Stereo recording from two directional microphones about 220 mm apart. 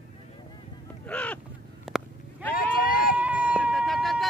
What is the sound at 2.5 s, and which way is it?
Vehicle, 40° left (ahead or behind).